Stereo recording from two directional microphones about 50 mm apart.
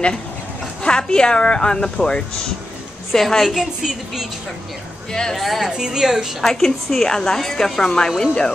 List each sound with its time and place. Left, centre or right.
0.8 s a woman's voice: centre
3.4 s a woman's voice: centre
5.1 s a woman's voice: centre
5.4 s a woman's voice: centre
5.7 s a woman's voice: centre
6.4 s a woman's voice: centre